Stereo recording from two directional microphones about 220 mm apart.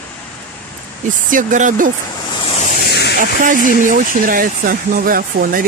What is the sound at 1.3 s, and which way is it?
Speech, 35° right (ahead or behind).